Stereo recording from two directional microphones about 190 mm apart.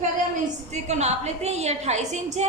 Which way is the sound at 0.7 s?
35° right (ahead or behind).